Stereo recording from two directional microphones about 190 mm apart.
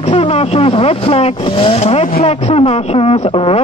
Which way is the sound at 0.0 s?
30° left (ahead or behind).